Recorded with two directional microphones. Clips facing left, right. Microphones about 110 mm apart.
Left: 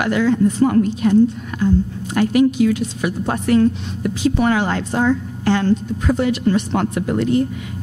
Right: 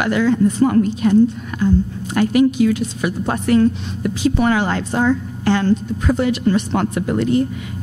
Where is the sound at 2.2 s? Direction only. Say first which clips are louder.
Even; 15° right (ahead or behind).